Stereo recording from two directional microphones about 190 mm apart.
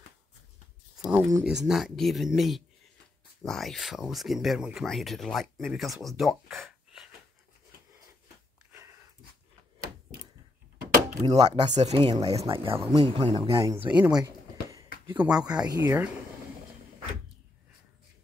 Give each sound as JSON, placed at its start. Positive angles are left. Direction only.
{"t": 0.9, "sound": "a sound", "side_deg": -5}
{"t": 1.4, "sound": "speech", "side_deg": -5}
{"t": 11.2, "sound": "speech", "side_deg": -20}
{"t": 11.7, "sound": "speech", "side_deg": -35}
{"t": 13.5, "sound": "speech", "side_deg": -15}
{"t": 14.1, "sound": "a sound", "side_deg": -20}
{"t": 15.1, "sound": "speech", "side_deg": -5}
{"t": 15.6, "sound": "speech", "side_deg": -15}